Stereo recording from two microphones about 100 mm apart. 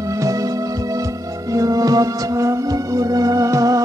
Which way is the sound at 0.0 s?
35° right (ahead or behind).